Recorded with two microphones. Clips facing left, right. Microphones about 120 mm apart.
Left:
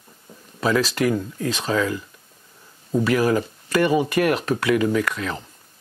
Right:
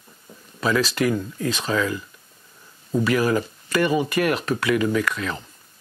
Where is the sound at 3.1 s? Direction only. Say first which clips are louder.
Left 1 dB; 40° left (ahead or behind).